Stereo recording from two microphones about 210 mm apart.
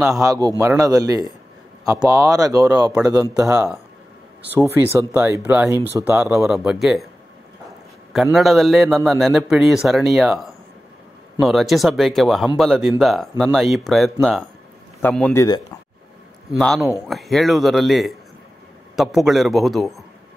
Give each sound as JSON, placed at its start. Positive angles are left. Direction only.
{"t": 0.2, "sound": "a man's voice", "side_deg": -15}
{"t": 8.1, "sound": "a man's voice", "side_deg": 0}
{"t": 16.5, "sound": "a man's voice", "side_deg": 0}